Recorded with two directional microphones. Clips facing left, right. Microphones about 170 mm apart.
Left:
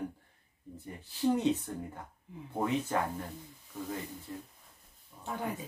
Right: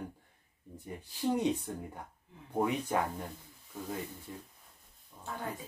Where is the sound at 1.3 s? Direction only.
15° right (ahead or behind).